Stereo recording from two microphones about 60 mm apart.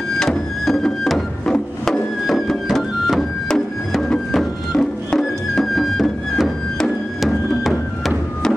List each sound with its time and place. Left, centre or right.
0.2 s music: centre
1.4 s music: centre
2.2 s music: centre